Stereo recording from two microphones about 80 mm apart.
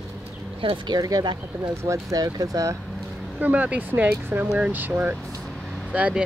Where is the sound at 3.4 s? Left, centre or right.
Centre.